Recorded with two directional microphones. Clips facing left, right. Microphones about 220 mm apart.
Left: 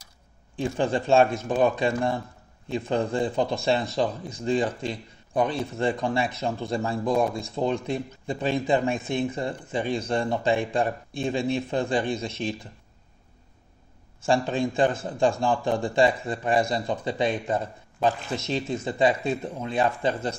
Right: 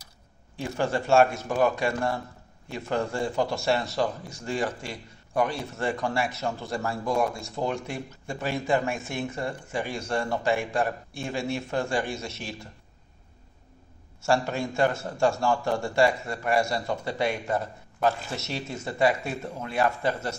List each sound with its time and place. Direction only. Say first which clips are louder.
0.6 s a man's voice: left 3 dB; 20° left (ahead or behind)
14.2 s speech: left 2 dB; 15° left (ahead or behind)